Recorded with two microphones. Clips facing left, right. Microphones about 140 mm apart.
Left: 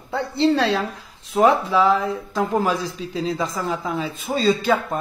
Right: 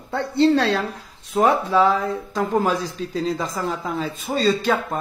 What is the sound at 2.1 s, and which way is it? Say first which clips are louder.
A man's voice: even; centre (ahead or behind).